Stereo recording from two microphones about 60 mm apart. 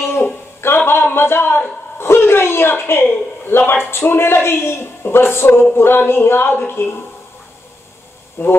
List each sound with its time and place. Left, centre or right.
0.0 s a sound: left
3.4 s speech: left
8.4 s speech: left